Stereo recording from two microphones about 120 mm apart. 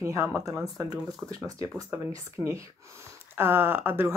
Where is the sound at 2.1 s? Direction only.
25° right (ahead or behind).